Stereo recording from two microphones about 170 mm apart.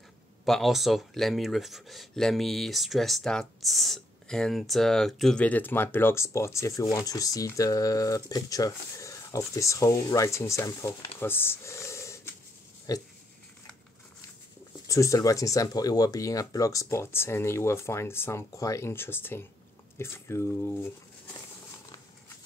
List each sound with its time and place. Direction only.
0.5 s speech: centre (ahead or behind); by 13.0 s 20° left (ahead or behind)
14.9 s speech: 20° left (ahead or behind)